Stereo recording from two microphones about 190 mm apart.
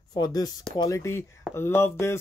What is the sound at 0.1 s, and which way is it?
Speech, 20° left (ahead or behind).